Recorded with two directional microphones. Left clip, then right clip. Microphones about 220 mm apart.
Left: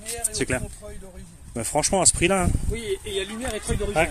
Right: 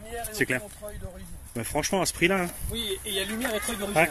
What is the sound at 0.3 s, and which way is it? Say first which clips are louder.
Speech: even; 15° left (ahead or behind).